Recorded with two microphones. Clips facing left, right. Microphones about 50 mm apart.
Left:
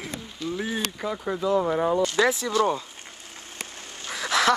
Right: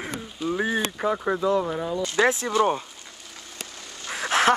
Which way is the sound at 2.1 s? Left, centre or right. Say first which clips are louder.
Right 1 dB; right.